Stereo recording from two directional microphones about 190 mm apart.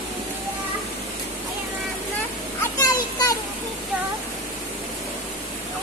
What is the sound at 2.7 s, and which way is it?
Children playing, 20° left (ahead or behind).